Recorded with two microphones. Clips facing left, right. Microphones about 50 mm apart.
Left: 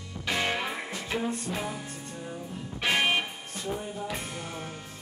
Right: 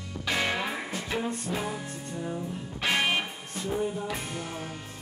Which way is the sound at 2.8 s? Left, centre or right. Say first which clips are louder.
Left 1 dB; centre.